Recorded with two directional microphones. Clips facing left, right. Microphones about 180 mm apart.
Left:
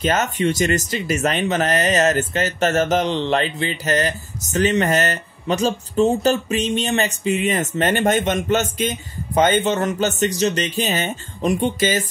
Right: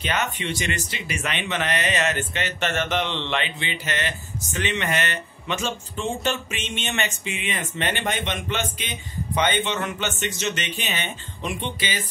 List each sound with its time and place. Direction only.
0.0 s speech: 40° left (ahead or behind)